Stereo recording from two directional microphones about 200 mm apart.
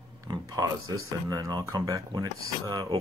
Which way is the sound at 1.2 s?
15° right (ahead or behind).